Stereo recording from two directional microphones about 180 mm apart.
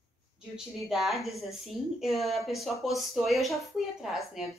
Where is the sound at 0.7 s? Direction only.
Centre (ahead or behind).